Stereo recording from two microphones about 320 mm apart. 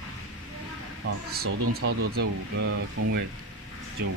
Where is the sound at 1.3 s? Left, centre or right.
Right.